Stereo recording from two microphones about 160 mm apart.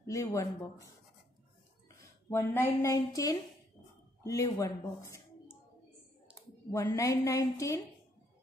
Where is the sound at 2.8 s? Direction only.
20° left (ahead or behind).